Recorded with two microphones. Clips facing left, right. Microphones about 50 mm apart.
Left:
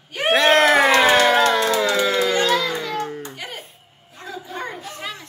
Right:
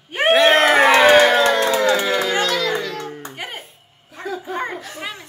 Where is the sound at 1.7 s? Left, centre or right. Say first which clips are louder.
Right 2 dB; right.